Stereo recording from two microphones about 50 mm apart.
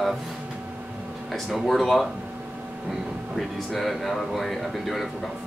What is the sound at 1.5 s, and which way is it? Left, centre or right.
Speech, centre.